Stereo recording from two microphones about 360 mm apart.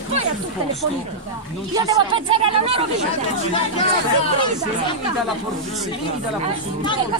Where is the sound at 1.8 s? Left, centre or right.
Centre.